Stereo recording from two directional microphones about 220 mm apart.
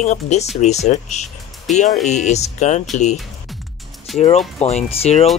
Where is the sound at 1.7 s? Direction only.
Centre (ahead or behind).